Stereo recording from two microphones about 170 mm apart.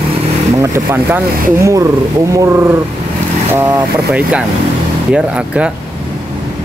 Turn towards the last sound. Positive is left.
turn(degrees=-5)  # may be behind; listen again after turning